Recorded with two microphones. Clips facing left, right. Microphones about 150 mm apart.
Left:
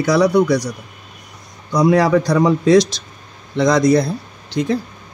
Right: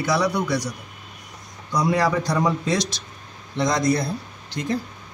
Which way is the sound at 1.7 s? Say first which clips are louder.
Left 7 dB; 85° left.